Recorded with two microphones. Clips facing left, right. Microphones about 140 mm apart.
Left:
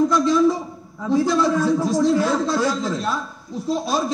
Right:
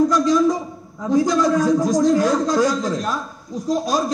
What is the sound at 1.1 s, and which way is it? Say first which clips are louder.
Speech: right 1 dB; 40° right (ahead or behind).